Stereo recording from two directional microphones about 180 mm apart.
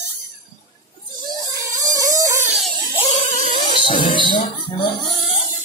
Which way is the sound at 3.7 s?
25° left (ahead or behind).